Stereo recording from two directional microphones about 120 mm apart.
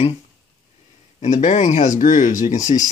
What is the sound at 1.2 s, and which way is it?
Speech, 70° left (ahead or behind).